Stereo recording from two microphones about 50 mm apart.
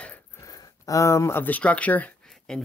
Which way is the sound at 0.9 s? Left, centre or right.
Left.